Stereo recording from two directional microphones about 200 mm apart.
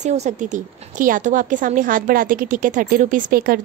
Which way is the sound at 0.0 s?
35° right (ahead or behind).